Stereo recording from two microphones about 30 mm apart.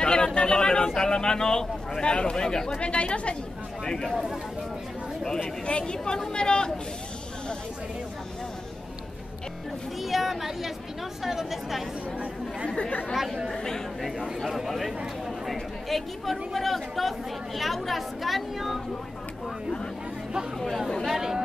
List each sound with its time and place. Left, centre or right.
0.0 s a sound: left
2.0 s speech: left
2.3 s speech: left
2.8 s speech: left
3.8 s speech: left
5.4 s speech: left
9.9 s speech: centre
13.5 s speech: centre
14.7 s speech: centre
20.5 s speech: centre
21.1 s speech: centre